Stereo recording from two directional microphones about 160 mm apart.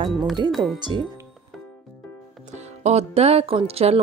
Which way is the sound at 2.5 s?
45° right (ahead or behind).